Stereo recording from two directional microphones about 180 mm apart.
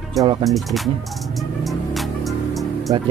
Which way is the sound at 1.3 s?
Centre (ahead or behind).